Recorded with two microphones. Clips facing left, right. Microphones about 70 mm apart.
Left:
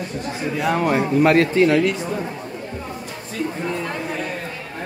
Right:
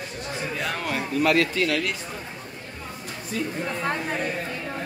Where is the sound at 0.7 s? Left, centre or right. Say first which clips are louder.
Left 11 dB; left.